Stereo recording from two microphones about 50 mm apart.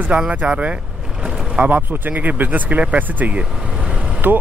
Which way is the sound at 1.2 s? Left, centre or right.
Centre.